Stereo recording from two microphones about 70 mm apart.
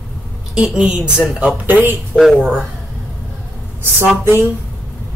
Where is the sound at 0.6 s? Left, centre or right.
Centre.